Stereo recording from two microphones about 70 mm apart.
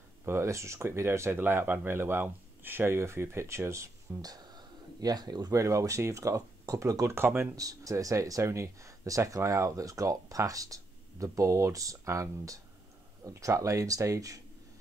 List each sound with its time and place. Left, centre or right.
0.2 s speech: right
4.2 s a sound: right
5.5 s speech: right
7.2 s speech: right
7.5 s speech: right